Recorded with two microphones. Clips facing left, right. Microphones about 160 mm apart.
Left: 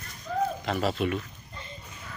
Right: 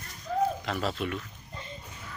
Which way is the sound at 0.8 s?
10° left (ahead or behind).